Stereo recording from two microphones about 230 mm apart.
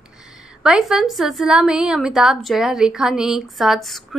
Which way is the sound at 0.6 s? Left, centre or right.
Centre.